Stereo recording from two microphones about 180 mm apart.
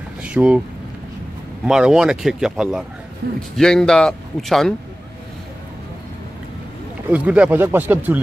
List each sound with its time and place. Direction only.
0.2 s speech: 5° right (ahead or behind)
1.7 s speech: 5° right (ahead or behind)
3.2 s a man's voice: 65° right (ahead or behind)
3.5 s speech: 5° left (ahead or behind)
7.1 s speech: 5° right (ahead or behind)